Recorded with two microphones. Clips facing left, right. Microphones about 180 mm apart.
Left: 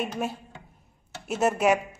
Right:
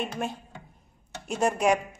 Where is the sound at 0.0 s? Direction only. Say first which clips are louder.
Left 2 dB; 5° left (ahead or behind).